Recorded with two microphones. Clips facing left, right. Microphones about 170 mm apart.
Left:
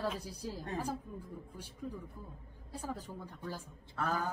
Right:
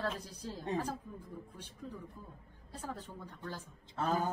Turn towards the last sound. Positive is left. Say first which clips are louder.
# right 2 dB
turn(degrees=-20)  # may be behind; listen again after turning